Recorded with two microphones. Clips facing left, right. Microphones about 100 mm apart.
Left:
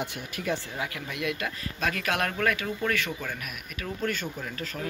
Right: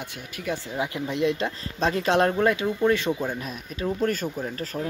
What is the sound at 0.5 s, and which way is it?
Speech, 20° right (ahead or behind).